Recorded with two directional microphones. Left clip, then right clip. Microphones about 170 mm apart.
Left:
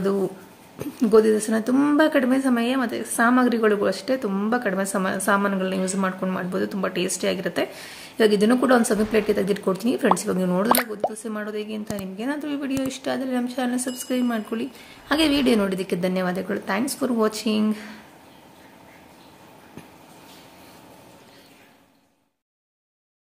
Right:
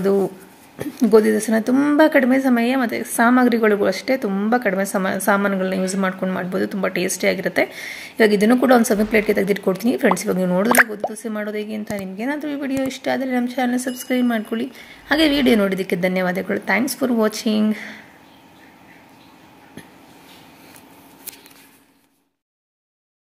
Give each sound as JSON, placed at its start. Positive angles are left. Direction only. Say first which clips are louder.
{"t": 0.0, "sound": "a woman's voice", "louder": "right 5 dB", "side_deg": -20}